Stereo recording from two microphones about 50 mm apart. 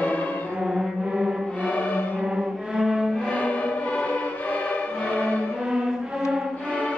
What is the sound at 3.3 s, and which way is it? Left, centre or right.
Music, left.